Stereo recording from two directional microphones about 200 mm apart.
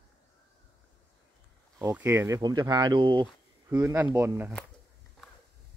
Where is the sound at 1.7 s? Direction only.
10° right (ahead or behind).